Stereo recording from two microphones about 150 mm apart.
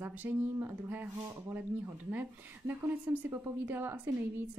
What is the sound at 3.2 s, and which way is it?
Speech, 15° right (ahead or behind).